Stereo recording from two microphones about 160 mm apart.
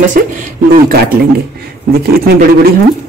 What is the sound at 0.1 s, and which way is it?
Speech, 55° right (ahead or behind).